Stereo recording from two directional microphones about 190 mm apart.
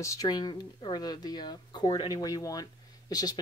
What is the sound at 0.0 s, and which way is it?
Speech, 15° left (ahead or behind).